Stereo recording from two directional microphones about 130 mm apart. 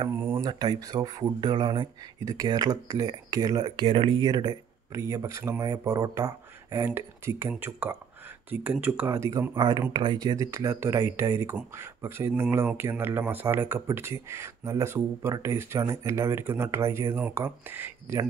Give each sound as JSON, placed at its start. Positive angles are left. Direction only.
{"t": 0.1, "sound": "speech", "side_deg": -15}
{"t": 0.4, "sound": "speech", "side_deg": -35}
{"t": 3.8, "sound": "speech", "side_deg": -40}